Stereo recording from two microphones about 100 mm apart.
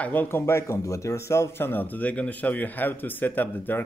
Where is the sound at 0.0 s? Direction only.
20° left (ahead or behind).